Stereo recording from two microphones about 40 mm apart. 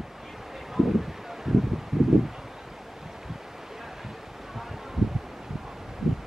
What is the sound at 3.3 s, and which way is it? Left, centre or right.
Wind, centre.